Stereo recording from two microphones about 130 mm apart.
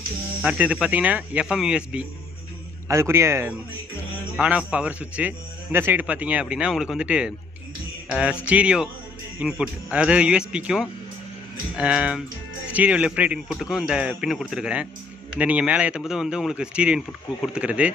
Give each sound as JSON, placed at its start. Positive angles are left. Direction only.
{"t": 0.4, "sound": "a man's voice", "side_deg": -10}
{"t": 2.9, "sound": "a man's voice", "side_deg": -20}
{"t": 4.4, "sound": "a man's voice", "side_deg": -10}